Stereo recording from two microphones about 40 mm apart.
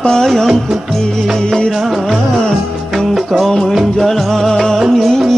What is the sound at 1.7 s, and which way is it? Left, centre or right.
Music, centre.